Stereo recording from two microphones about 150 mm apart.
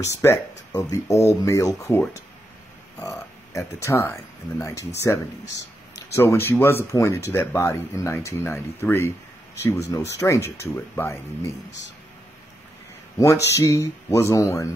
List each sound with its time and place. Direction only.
0.7 s speech: 25° left (ahead or behind)
5.9 s speech: 20° left (ahead or behind)
13.2 s speech: 20° left (ahead or behind)